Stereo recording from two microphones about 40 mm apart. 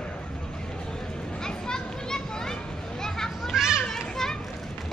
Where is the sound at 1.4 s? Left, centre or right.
Centre.